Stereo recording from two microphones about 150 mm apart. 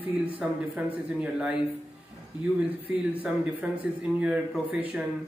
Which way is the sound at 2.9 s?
10° right (ahead or behind).